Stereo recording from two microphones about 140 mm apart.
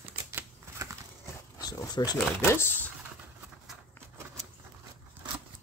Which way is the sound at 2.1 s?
15° left (ahead or behind).